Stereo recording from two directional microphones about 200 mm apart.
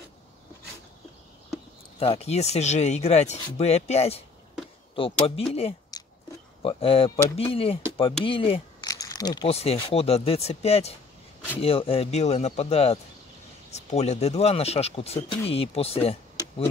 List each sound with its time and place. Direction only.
2.0 s speech: 30° left (ahead or behind)
8.3 s a sound: 25° left (ahead or behind)
9.5 s speech: 30° left (ahead or behind)